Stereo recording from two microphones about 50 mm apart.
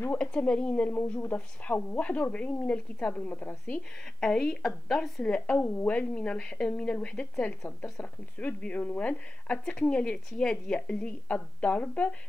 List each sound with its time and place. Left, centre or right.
0.1 s a woman's voice: left
4.0 s a woman's voice: centre
5.5 s a woman's voice: left
5.9 s a woman's voice: left